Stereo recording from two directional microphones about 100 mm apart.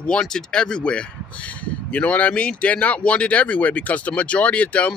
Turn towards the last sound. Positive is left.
turn(degrees=15)  # may be behind; listen again after turning